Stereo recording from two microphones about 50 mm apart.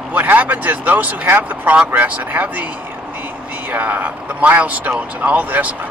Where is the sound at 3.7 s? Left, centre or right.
Right.